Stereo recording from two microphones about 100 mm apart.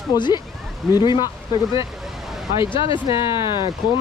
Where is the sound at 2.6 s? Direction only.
60° left (ahead or behind).